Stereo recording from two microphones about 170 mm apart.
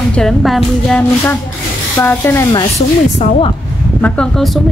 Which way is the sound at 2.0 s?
10° left (ahead or behind).